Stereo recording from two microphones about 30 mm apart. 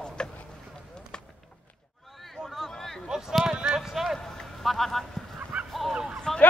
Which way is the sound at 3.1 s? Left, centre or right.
Centre.